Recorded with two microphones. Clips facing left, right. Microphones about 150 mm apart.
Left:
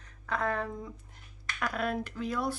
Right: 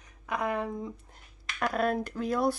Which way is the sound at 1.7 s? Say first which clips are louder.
Right 5 dB; 40° right (ahead or behind).